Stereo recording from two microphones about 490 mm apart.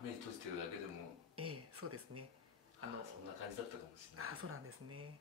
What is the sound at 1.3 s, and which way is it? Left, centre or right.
Speech, right.